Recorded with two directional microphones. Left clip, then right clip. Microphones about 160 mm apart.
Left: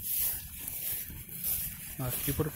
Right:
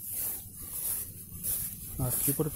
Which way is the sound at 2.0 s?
10° right (ahead or behind).